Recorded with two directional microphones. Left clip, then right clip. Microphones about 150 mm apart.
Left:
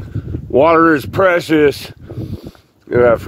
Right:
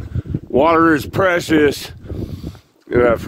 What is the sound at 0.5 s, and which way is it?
Speech, 10° right (ahead or behind).